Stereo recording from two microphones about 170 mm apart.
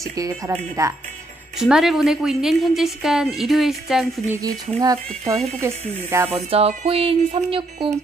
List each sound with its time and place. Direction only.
0.5 s speech: 20° right (ahead or behind)
1.6 s a woman's voice: centre (ahead or behind)
4.3 s speech: 20° right (ahead or behind)
6.5 s speech: 40° right (ahead or behind)